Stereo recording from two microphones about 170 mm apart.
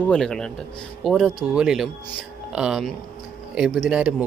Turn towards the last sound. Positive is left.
turn(degrees=-5)  # may be behind; listen again after turning